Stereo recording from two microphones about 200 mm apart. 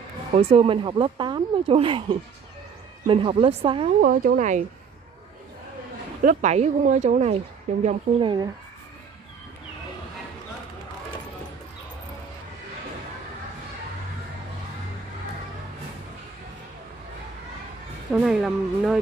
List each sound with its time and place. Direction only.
0.4 s speech: 30° right (ahead or behind)
4.0 s speech: 45° right (ahead or behind)
6.2 s speech: 35° right (ahead or behind)
18.1 s speech: centre (ahead or behind)